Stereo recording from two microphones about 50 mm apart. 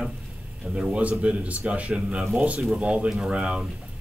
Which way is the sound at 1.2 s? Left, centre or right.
Right.